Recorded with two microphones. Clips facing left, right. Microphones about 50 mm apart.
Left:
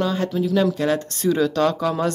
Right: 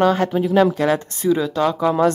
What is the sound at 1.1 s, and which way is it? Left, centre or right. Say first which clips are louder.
Speech: right 1 dB; centre.